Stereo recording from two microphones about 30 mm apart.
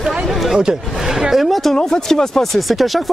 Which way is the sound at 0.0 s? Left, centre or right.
Centre.